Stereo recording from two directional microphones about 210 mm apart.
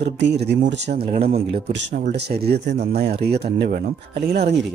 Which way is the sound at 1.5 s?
55° right (ahead or behind).